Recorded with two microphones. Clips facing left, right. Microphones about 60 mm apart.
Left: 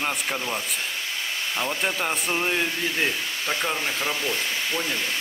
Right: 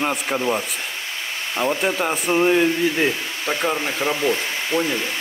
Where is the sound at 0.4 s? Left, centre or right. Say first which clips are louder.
Right 7 dB; right.